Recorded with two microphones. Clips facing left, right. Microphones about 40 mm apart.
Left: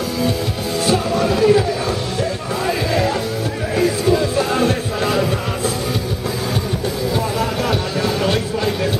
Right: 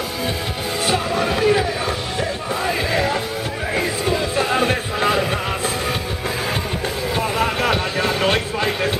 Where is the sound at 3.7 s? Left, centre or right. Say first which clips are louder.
Left 5 dB; right.